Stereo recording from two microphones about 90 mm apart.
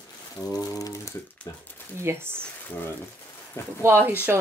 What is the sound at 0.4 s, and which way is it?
Speech, 45° left (ahead or behind).